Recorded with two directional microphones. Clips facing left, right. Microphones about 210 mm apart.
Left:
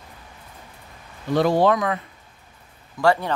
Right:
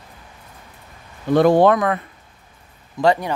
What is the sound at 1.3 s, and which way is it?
Speech, 55° right (ahead or behind).